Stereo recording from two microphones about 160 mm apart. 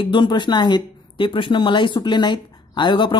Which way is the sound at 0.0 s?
30° left (ahead or behind).